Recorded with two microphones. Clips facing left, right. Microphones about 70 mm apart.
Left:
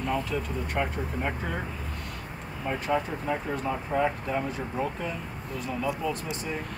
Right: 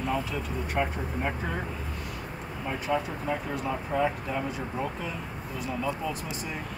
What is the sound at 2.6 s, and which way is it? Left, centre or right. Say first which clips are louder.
Speech: left 1 dB; centre.